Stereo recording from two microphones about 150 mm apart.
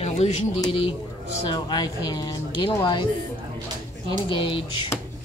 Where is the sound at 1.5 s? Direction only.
30° left (ahead or behind).